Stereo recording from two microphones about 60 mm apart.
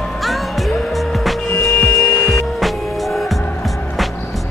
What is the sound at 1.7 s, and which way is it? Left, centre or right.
Music, left.